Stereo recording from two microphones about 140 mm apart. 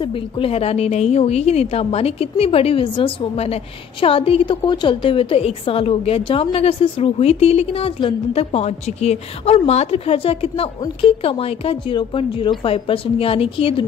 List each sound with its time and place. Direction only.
0.0 s a woman's voice: 45° left (ahead or behind)